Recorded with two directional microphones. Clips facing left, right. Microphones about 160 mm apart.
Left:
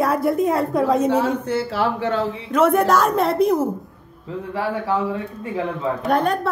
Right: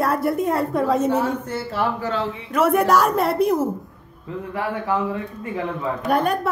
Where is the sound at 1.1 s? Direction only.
75° left (ahead or behind).